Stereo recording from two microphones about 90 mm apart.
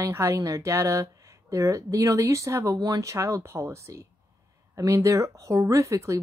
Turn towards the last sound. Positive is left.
turn(degrees=-35)  # may be behind; listen again after turning